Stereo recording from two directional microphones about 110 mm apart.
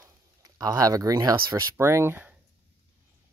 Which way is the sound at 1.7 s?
20° right (ahead or behind).